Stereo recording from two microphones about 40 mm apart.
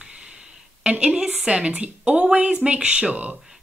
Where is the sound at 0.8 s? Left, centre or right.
Right.